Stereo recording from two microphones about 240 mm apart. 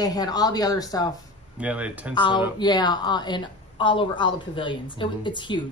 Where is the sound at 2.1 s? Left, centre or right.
Centre.